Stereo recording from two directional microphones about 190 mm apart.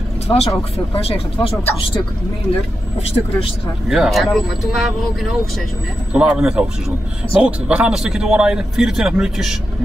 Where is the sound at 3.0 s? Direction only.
30° left (ahead or behind).